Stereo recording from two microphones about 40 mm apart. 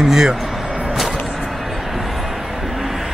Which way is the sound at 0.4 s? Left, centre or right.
Centre.